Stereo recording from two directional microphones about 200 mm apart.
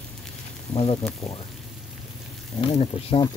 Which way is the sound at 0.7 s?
25° left (ahead or behind).